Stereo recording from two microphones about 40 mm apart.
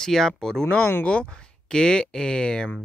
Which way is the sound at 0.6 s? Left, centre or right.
Left.